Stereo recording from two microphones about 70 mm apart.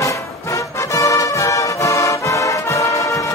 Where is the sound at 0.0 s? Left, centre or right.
Left.